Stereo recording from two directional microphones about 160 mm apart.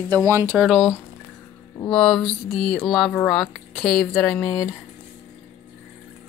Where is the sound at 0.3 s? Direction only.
15° right (ahead or behind).